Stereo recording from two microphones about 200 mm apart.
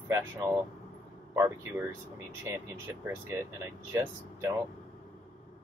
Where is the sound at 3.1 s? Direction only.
15° right (ahead or behind).